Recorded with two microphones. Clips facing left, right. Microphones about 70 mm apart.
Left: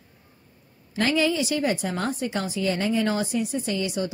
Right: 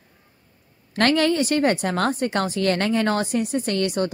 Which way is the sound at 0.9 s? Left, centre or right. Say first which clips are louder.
Right 4 dB; right.